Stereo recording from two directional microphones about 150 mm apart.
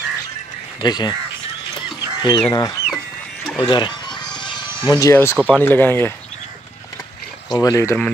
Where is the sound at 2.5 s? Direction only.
25° left (ahead or behind).